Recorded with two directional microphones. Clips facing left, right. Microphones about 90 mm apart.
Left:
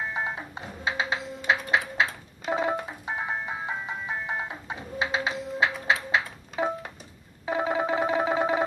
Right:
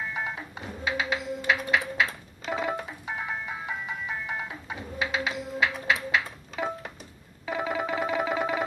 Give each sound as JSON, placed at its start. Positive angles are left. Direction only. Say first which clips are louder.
{"t": 0.1, "sound": "music", "louder": "left 2 dB", "side_deg": 25}
{"t": 2.5, "sound": "ice cream truck", "louder": "left 3 dB", "side_deg": 25}
{"t": 7.4, "sound": "music", "louder": "left 3 dB", "side_deg": 30}